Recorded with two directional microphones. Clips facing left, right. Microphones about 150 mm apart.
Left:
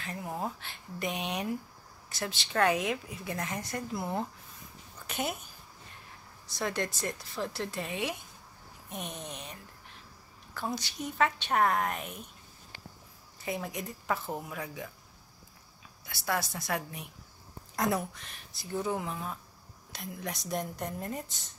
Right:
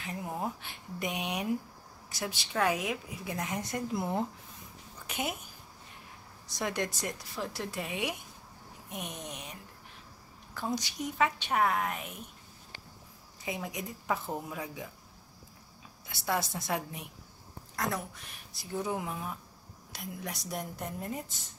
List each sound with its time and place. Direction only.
0.4 s a woman's voice: 15° right (ahead or behind)
6.4 s a woman's voice: 15° right (ahead or behind)
13.5 s a woman's voice: 10° right (ahead or behind)
16.1 s a woman's voice: 25° right (ahead or behind)
18.5 s a woman's voice: 10° right (ahead or behind)